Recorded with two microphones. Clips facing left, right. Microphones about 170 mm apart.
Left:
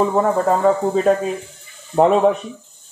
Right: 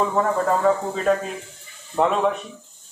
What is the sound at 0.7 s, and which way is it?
Speech, 35° left (ahead or behind).